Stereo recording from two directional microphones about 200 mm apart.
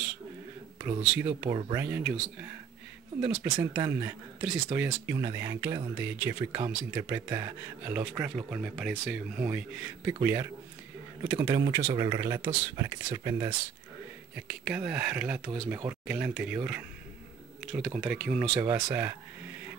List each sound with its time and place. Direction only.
1.2 s speech: 15° right (ahead or behind)
3.4 s speech: 20° right (ahead or behind)
14.3 s speech: 5° right (ahead or behind)
18.5 s speech: 15° right (ahead or behind)